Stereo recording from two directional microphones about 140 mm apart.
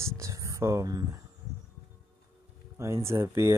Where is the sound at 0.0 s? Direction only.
20° right (ahead or behind).